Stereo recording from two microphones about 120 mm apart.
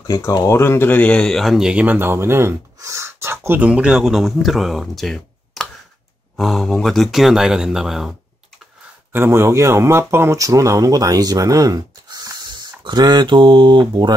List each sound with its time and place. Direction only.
0.3 s speech: 25° left (ahead or behind); by 8.2 s 5° right (ahead or behind)
9.1 s speech: 20° right (ahead or behind); by 14.1 s 40° right (ahead or behind)